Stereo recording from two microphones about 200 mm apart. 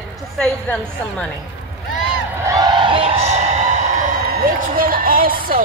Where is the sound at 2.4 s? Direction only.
15° right (ahead or behind).